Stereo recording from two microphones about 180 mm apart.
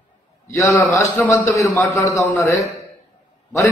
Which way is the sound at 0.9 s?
15° left (ahead or behind).